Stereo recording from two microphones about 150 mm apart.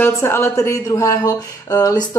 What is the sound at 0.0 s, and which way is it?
A woman's voice, 15° left (ahead or behind).